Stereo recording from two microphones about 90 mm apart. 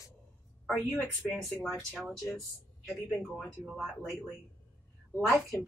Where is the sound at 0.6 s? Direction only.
Centre (ahead or behind).